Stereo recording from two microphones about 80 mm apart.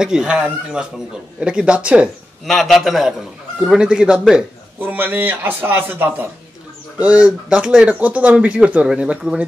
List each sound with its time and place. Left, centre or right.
0.0 s speech: centre
2.4 s a man's voice: centre
4.7 s a man's voice: right